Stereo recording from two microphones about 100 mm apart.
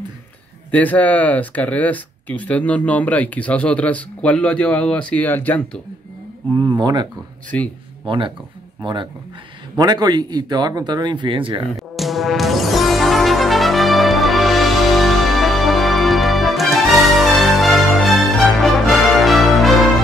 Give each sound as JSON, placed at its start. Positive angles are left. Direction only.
{"t": 0.7, "sound": "speech", "side_deg": 15}
{"t": 6.5, "sound": "speech", "side_deg": -40}
{"t": 7.5, "sound": "speech", "side_deg": 10}
{"t": 8.1, "sound": "speech", "side_deg": -60}
{"t": 9.8, "sound": "speech", "side_deg": -40}
{"t": 11.7, "sound": "music", "side_deg": 0}